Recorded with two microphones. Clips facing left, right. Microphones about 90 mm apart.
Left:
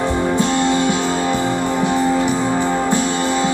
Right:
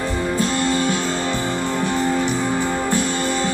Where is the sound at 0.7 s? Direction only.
20° left (ahead or behind).